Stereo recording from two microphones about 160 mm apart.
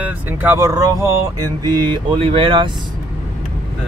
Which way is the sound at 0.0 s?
10° right (ahead or behind).